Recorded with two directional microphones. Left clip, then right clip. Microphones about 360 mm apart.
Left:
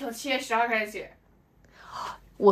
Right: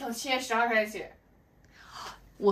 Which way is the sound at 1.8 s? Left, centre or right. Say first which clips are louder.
Left 7 dB; centre.